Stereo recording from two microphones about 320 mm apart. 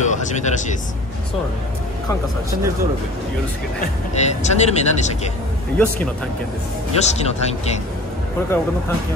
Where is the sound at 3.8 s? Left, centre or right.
Left.